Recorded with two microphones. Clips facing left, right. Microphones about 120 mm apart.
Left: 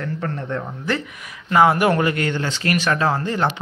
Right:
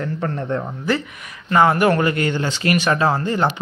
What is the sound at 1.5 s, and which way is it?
Speech, 10° left (ahead or behind).